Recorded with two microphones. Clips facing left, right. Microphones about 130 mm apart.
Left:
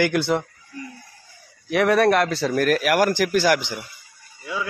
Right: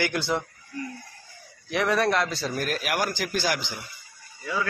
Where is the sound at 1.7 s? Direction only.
65° left (ahead or behind).